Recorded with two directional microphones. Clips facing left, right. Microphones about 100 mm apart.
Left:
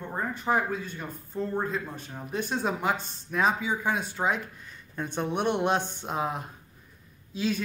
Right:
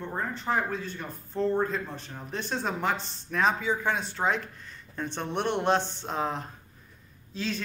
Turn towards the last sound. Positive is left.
turn(degrees=10)  # may be behind; listen again after turning